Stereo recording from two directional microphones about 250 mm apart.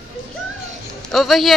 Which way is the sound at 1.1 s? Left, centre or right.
Centre.